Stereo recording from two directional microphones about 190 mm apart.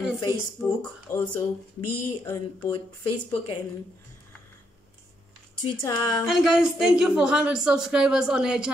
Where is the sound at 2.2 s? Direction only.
15° left (ahead or behind).